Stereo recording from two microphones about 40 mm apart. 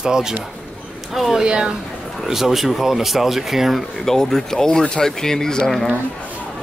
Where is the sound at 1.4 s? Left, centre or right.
Right.